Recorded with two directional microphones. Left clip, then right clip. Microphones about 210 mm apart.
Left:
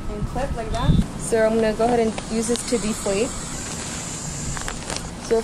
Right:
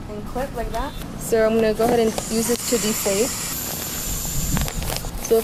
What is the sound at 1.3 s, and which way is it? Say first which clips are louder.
Speech: right 1 dB; 25° right (ahead or behind).